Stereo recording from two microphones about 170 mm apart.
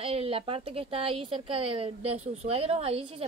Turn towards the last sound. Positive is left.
turn(degrees=-35)  # may be behind; listen again after turning